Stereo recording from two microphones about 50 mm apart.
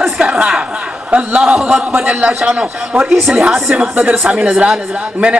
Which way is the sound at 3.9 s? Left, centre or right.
Right.